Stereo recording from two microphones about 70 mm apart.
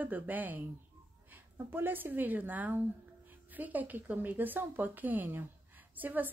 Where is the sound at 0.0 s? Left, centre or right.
Right.